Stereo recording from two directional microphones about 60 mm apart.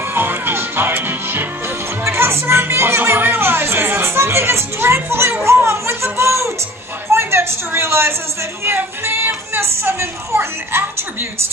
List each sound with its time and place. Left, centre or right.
0.1 s music: right
2.0 s a woman's voice: right